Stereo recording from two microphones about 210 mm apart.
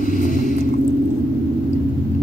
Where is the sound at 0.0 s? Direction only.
40° left (ahead or behind).